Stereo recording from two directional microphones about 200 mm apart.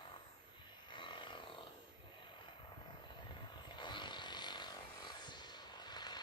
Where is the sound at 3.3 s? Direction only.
25° left (ahead or behind).